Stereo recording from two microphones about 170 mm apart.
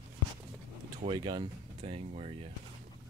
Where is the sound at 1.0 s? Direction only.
30° right (ahead or behind).